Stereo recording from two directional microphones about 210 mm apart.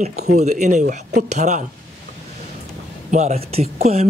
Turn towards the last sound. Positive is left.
turn(degrees=-30)  # may be behind; listen again after turning